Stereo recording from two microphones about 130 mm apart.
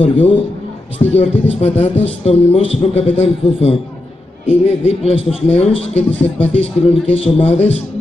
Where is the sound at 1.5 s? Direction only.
55° left (ahead or behind).